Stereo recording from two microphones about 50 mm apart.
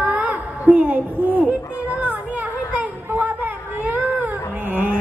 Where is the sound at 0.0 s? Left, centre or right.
Right.